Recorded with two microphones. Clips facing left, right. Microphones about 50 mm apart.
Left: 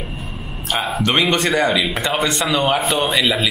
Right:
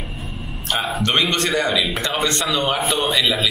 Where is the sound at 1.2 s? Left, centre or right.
Centre.